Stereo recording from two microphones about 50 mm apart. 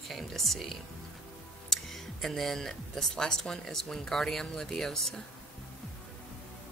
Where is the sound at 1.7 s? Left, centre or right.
Centre.